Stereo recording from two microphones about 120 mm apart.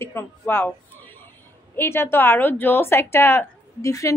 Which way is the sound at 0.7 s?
15° left (ahead or behind).